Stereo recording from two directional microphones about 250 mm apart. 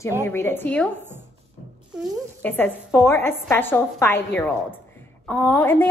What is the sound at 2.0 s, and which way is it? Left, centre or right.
A woman's voice, centre.